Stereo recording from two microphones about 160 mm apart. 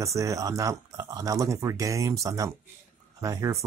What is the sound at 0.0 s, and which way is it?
Speech, 20° right (ahead or behind).